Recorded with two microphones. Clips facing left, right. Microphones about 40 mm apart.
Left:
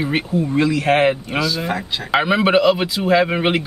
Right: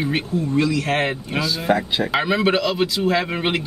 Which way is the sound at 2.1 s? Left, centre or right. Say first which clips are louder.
Left 5 dB; centre.